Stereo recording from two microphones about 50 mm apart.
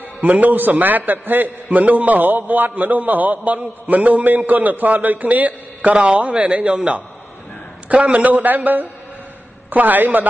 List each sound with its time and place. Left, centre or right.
0.2 s a man's voice: right